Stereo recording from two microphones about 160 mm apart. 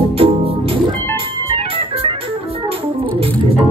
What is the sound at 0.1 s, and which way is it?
Music, 35° right (ahead or behind).